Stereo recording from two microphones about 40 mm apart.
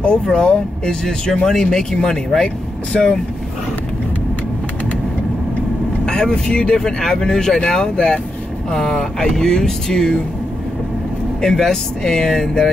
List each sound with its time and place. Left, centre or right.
0.0 s speech: left
6.0 s speech: centre
11.4 s speech: centre